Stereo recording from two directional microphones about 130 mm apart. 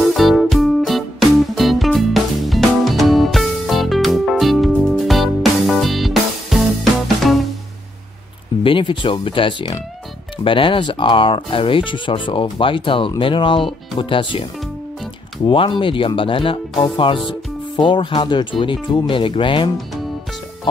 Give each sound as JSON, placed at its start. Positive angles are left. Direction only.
{"t": 0.0, "sound": "music", "side_deg": 0}
{"t": 8.6, "sound": "speech", "side_deg": 40}
{"t": 15.4, "sound": "speech", "side_deg": 40}